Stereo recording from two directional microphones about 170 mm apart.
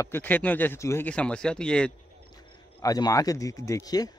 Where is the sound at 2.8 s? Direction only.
20° left (ahead or behind).